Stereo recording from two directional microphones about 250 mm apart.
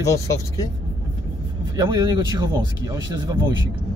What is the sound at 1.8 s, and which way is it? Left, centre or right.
Speech, centre.